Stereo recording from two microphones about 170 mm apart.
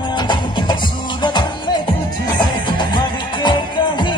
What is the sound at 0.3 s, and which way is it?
Music, 25° left (ahead or behind).